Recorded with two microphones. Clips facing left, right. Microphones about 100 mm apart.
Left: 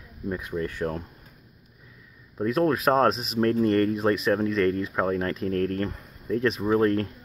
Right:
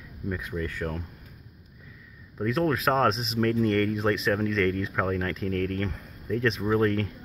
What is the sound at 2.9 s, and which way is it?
Speech, 25° left (ahead or behind).